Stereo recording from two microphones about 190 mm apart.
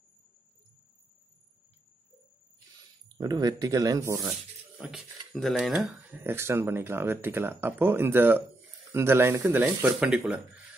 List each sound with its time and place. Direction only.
3.2 s speech: 20° right (ahead or behind)
4.7 s speech: centre (ahead or behind)